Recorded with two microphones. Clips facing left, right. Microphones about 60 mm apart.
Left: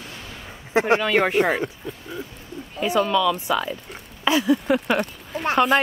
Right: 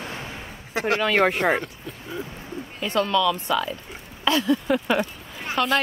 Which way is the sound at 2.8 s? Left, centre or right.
Centre.